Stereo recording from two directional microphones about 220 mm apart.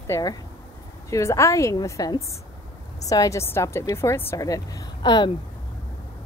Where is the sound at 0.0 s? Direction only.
15° left (ahead or behind).